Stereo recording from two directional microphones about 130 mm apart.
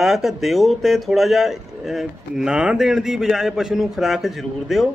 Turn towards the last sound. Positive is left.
turn(degrees=0)  # may be behind; listen again after turning